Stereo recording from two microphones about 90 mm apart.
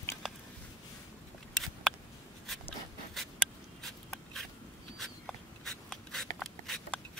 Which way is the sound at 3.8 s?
Centre (ahead or behind).